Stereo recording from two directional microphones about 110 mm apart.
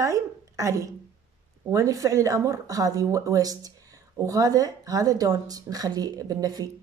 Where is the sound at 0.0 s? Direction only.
30° right (ahead or behind).